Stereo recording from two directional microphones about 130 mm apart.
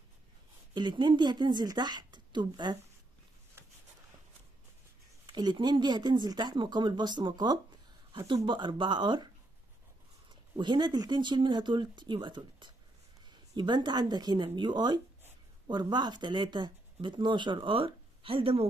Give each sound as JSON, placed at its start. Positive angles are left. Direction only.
{"t": 0.7, "sound": "speech", "side_deg": -35}
{"t": 5.2, "sound": "speech", "side_deg": -35}
{"t": 10.5, "sound": "speech", "side_deg": -35}